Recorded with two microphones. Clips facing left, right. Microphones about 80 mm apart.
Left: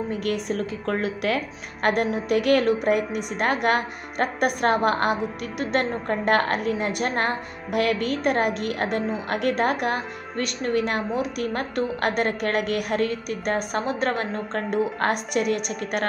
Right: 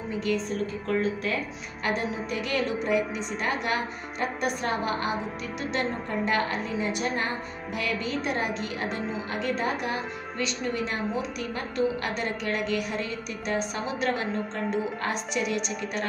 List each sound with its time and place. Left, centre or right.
0.1 s a woman's voice: left